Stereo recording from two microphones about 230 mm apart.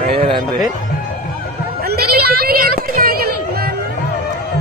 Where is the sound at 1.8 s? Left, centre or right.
Right.